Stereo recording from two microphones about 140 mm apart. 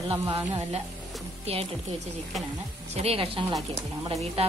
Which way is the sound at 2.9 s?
45° right (ahead or behind).